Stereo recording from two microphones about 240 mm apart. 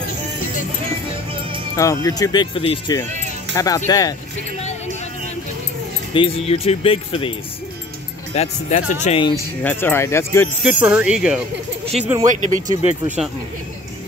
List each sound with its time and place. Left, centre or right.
2.0 s speech: centre
6.1 s speech: left
8.4 s speech: left
9.6 s speech: centre
10.6 s speech: centre
12.3 s speech: right